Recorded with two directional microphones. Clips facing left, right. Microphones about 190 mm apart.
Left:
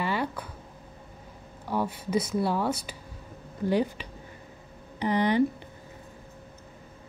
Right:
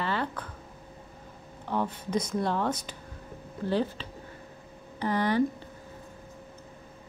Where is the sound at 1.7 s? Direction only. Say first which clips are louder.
Left 1 dB; 10° left (ahead or behind).